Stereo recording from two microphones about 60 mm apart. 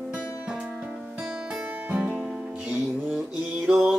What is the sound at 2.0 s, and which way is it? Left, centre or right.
Music, centre.